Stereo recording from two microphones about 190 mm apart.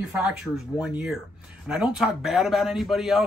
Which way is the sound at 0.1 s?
5° right (ahead or behind).